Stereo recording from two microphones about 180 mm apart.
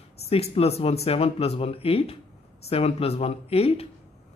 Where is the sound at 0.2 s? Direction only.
35° left (ahead or behind).